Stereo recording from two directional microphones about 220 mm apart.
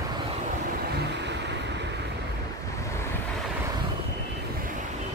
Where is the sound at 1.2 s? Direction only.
50° right (ahead or behind).